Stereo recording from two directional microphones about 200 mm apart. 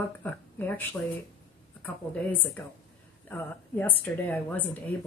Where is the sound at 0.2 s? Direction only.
10° left (ahead or behind).